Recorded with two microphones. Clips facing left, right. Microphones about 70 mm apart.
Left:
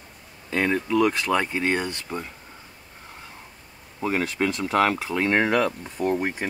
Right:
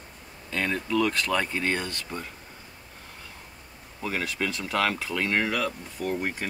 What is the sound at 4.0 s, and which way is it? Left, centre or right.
Speech, left.